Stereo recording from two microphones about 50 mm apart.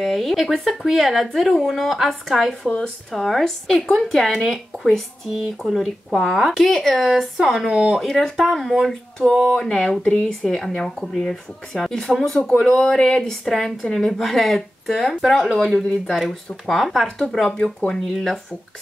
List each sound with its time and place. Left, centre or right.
0.0 s a woman's voice: centre
9.6 s speech: centre
12.9 s speech: centre
13.3 s a woman's voice: centre